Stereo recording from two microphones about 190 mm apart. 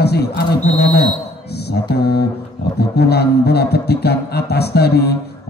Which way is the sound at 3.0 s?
55° left (ahead or behind).